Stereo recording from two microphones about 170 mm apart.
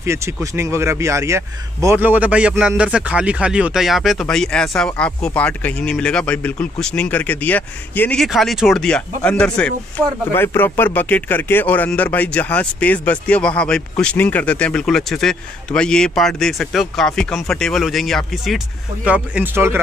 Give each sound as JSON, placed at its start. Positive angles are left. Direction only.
{"t": 0.0, "sound": "speech", "side_deg": -15}